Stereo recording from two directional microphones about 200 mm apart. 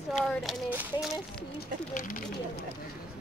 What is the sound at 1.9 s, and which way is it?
Speech, 40° left (ahead or behind).